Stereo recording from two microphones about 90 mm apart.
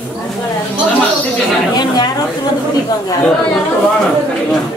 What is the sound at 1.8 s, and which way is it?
Speech, 50° left (ahead or behind).